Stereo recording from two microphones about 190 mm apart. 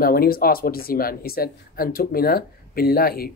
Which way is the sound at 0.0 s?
50° left (ahead or behind).